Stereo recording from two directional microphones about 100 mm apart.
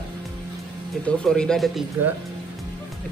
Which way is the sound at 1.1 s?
10° left (ahead or behind).